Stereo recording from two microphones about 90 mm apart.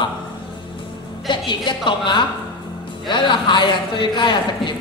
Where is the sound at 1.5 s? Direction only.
60° left (ahead or behind).